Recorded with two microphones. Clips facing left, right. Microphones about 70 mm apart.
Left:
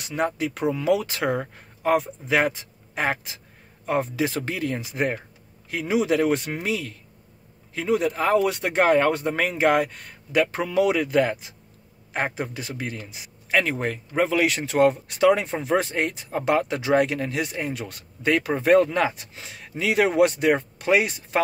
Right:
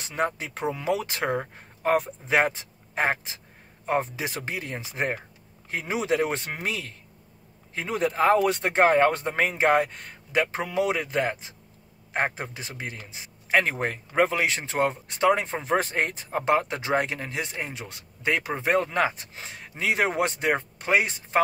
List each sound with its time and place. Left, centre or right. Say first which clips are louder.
0.0 s speech: left 3 dB; right
14.3 s speech: left 4 dB; right